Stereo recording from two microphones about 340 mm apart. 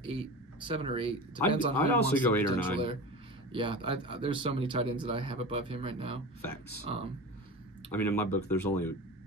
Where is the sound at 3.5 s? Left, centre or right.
Centre.